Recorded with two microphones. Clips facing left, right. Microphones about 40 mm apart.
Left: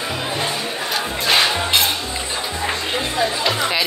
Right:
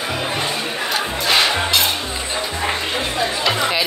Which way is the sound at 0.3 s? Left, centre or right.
Right.